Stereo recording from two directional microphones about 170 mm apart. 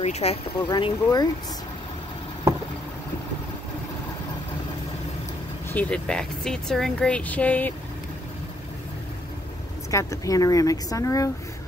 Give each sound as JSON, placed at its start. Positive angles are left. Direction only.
{"t": 0.0, "sound": "speech", "side_deg": 40}
{"t": 0.6, "sound": "speech", "side_deg": 25}
{"t": 2.5, "sound": "a sound", "side_deg": -15}
{"t": 5.7, "sound": "speech", "side_deg": 10}
{"t": 9.8, "sound": "speech", "side_deg": 20}